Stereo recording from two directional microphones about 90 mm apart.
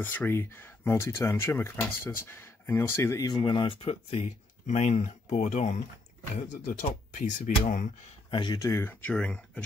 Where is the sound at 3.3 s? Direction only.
55° left (ahead or behind).